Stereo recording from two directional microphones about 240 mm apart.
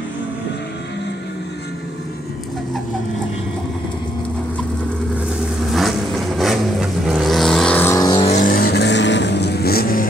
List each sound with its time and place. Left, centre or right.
5.7 s vehicle: centre
8.3 s vehicle: left